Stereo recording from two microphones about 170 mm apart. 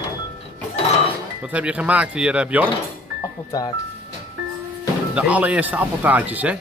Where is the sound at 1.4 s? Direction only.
5° right (ahead or behind).